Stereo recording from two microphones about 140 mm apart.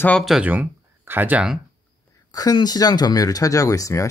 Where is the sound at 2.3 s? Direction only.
30° left (ahead or behind).